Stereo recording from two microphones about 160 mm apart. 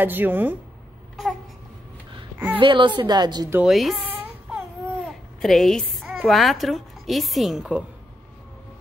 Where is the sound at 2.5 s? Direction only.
30° right (ahead or behind).